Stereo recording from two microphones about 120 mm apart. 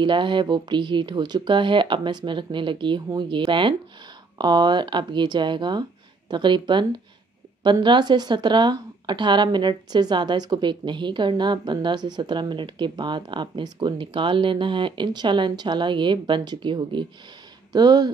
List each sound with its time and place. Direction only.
0.0 s speech: 40° right (ahead or behind)